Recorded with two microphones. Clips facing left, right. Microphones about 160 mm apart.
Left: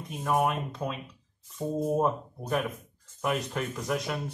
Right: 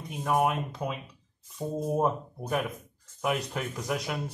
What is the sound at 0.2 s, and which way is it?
Speech, 5° right (ahead or behind).